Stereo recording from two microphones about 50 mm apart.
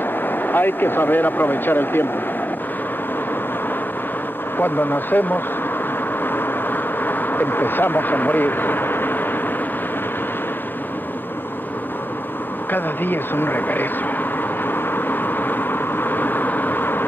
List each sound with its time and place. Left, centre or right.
0.4 s speech: left
4.6 s speech: left
6.2 s bee: left
12.7 s speech: left
14.7 s vehicle: left